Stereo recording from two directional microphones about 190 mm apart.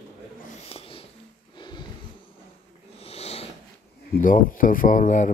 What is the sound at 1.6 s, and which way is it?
Snort, 25° left (ahead or behind).